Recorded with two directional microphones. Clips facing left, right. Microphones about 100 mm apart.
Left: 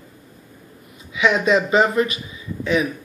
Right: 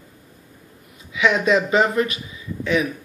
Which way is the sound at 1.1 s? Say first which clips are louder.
Left 1 dB; 20° left (ahead or behind).